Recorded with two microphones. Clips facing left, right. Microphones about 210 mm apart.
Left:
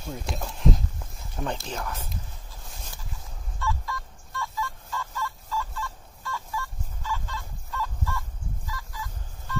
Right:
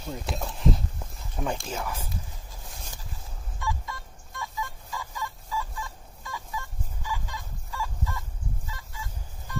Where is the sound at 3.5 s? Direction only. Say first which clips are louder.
Left 2 dB; 20° right (ahead or behind).